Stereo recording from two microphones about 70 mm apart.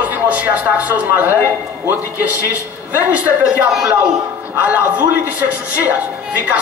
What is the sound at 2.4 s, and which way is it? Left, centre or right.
Speech, right.